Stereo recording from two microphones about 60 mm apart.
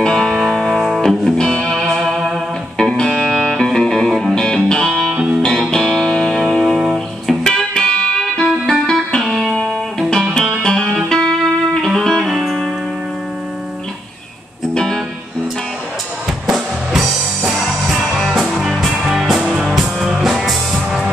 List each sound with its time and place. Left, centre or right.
0.0 s music: centre
0.3 s music: centre
2.8 s music: centre
3.4 s music: centre
5.1 s music: centre
5.4 s music: centre
6.6 s music: centre
7.4 s music: centre
9.2 s music: centre
12.3 s music: centre
14.7 s music: centre
16.4 s music: centre